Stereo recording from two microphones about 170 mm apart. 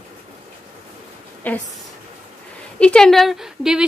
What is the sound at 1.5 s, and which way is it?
Speech, 10° left (ahead or behind).